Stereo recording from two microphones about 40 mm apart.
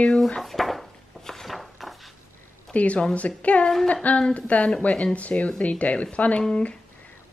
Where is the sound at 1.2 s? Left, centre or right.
Centre.